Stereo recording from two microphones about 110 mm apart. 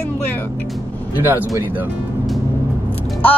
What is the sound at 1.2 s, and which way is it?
Speech, 15° right (ahead or behind).